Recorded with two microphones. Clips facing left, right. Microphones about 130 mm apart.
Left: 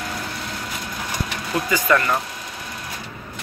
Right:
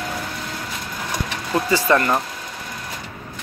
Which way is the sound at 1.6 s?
30° right (ahead or behind).